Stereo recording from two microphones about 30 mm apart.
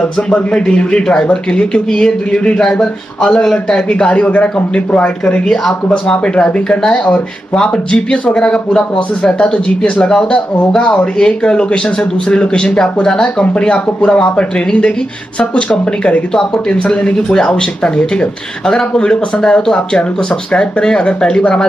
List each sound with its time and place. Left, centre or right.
0.6 s speech: left
2.6 s a man's voice: centre
4.1 s a man's voice: left
5.0 s speech: left
5.9 s speech: left
12.7 s speech: left
16.8 s a man's voice: left
17.1 s speech: left
18.9 s speech: left